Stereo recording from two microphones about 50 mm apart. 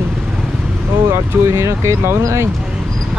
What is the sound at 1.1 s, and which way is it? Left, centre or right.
Speech, right.